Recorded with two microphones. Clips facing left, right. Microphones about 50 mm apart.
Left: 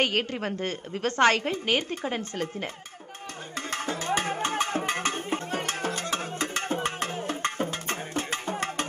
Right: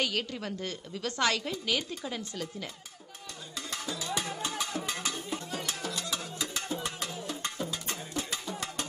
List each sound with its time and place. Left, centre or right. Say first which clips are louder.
0.0 s a woman's voice: left 6 dB; left
3.5 s music: left 6 dB; left